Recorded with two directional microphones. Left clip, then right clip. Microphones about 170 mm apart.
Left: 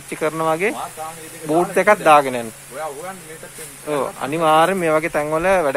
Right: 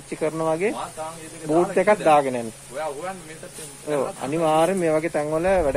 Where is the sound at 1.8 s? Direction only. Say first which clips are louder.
Left 6 dB; 10° left (ahead or behind).